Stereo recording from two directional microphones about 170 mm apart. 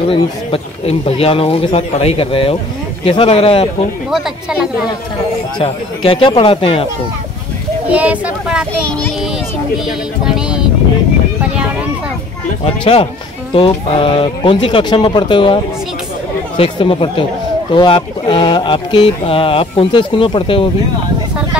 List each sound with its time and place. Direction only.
0.1 s speech: 35° left (ahead or behind)
4.1 s speech: 5° right (ahead or behind)
5.6 s speech: 30° left (ahead or behind)
7.9 s speech: 10° right (ahead or behind)
9.8 s speech: 5° right (ahead or behind)
12.8 s speech: 35° left (ahead or behind)